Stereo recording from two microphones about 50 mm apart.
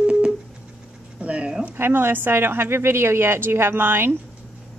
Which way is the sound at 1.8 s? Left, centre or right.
Right.